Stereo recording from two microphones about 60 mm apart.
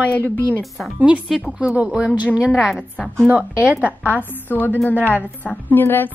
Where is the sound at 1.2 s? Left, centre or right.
Centre.